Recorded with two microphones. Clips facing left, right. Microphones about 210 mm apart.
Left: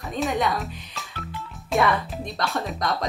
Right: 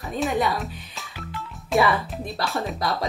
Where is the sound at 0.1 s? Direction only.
Centre (ahead or behind).